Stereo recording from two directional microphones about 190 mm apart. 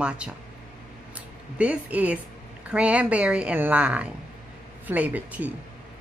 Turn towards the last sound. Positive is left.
turn(degrees=-10)  # may be behind; listen again after turning